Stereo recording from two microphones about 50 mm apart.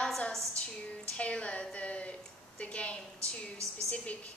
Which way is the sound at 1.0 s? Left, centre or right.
Left.